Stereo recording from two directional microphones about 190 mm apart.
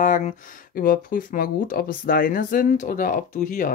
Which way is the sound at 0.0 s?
40° left (ahead or behind).